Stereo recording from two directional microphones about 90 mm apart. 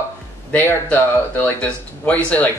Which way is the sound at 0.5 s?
20° left (ahead or behind).